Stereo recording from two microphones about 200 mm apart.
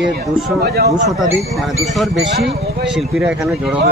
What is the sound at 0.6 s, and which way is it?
Speech, 55° right (ahead or behind).